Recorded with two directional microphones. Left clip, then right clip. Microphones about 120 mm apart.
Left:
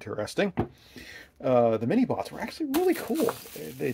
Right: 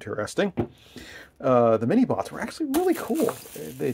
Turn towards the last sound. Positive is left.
turn(degrees=-10)  # may be behind; listen again after turning